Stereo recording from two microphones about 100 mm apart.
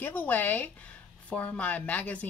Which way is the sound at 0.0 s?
15° left (ahead or behind).